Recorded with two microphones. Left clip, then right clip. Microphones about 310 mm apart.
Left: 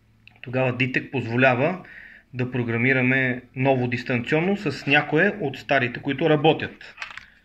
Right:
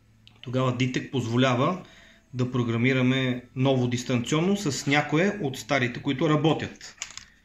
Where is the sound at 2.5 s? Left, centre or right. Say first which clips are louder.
Left 4 dB; centre.